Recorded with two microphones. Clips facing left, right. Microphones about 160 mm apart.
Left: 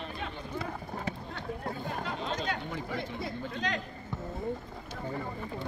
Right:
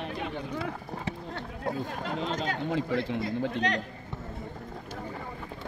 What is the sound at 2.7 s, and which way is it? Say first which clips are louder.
A man's voice: right 7 dB; 90° right.